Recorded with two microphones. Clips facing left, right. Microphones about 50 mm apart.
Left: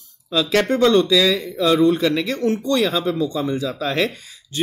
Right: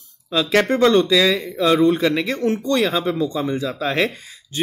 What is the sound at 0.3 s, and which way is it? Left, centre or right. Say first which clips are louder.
A man's voice: right 1 dB; right.